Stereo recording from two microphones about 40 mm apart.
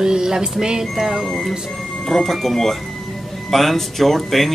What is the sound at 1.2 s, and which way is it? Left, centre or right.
Speech, centre.